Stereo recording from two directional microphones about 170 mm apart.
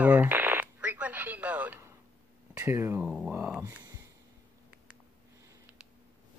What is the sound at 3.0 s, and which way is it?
Speech, 5° right (ahead or behind).